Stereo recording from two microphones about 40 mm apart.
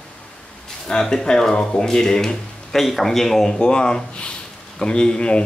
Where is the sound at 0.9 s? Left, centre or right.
Centre.